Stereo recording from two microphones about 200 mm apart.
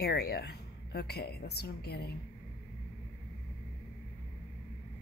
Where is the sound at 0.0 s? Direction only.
55° left (ahead or behind).